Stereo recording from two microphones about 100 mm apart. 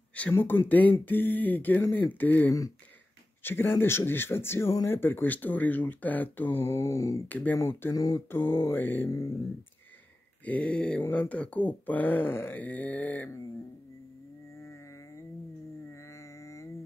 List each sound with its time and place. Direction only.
0.3 s speech: 20° left (ahead or behind)
7.2 s speech: 15° left (ahead or behind)
7.9 s a sound: 35° left (ahead or behind)
8.3 s speech: 25° left (ahead or behind)
10.4 s speech: 15° left (ahead or behind)